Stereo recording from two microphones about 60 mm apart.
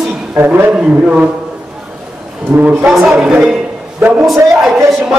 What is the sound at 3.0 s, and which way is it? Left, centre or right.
Speech, right.